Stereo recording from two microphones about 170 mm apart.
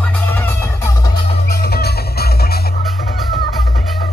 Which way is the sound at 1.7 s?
70° left (ahead or behind).